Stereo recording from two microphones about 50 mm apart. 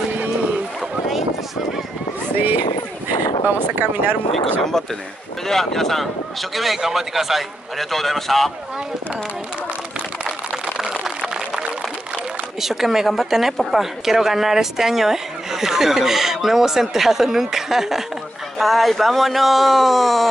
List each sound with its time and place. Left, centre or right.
2.3 s speech: right
4.3 s speech: centre
10.8 s a sound: centre
12.5 s speech: centre